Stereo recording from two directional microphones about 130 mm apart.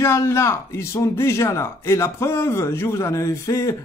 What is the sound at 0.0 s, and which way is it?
Speech, 20° left (ahead or behind).